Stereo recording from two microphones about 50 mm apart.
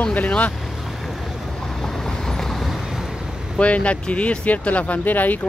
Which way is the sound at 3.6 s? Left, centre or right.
Left.